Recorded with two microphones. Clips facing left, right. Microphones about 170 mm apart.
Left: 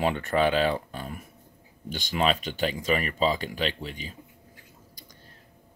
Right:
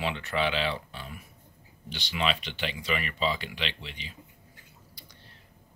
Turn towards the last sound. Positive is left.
turn(degrees=45)  # may be behind; listen again after turning